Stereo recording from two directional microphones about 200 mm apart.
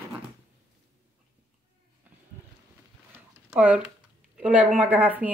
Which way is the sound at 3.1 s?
10° right (ahead or behind).